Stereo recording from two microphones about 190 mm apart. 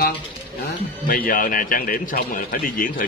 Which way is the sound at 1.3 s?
45° left (ahead or behind).